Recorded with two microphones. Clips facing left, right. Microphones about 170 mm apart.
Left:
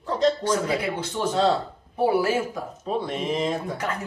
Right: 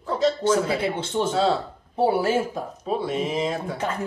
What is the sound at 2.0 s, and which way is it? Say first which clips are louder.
Speech: even; 25° right (ahead or behind).